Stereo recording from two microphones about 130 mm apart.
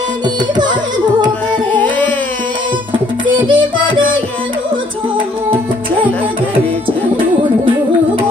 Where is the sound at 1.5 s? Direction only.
10° left (ahead or behind).